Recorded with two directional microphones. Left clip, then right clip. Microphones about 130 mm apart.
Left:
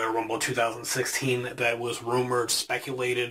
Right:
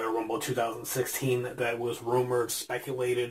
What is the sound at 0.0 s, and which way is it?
Speech, 5° left (ahead or behind).